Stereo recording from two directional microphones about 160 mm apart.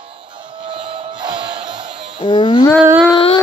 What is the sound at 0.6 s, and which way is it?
Music, 30° right (ahead or behind).